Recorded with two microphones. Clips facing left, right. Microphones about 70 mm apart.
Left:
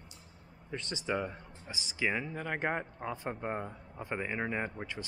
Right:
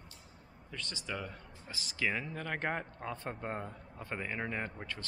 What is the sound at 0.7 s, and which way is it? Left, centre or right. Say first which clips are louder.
Speech: left 6 dB; left.